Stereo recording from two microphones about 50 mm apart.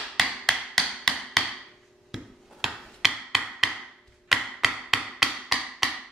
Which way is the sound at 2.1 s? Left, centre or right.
Centre.